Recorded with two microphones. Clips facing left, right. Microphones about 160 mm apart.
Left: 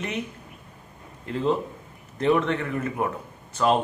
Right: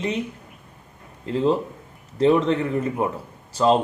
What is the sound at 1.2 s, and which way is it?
A man's voice, 30° right (ahead or behind).